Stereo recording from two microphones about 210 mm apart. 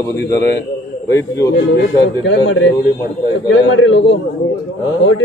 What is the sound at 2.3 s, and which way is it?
Speech, 65° left (ahead or behind).